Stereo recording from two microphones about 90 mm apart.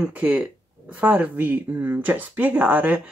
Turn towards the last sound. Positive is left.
turn(degrees=-15)  # may be behind; listen again after turning